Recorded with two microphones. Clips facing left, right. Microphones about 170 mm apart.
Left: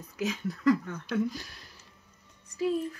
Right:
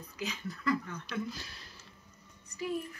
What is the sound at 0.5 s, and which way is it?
Speech, 55° left (ahead or behind).